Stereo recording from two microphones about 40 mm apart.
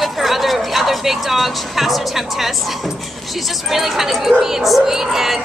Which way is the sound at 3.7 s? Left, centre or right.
Centre.